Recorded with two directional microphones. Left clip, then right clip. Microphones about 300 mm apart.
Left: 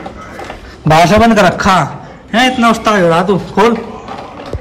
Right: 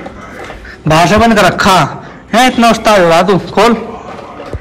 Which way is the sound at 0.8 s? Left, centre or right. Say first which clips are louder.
Even; centre.